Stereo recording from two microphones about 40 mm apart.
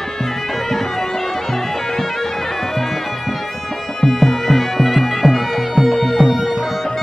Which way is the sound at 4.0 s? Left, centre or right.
Centre.